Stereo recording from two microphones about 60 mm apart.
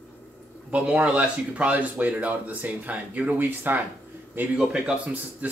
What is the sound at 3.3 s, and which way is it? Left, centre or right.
Speech, right.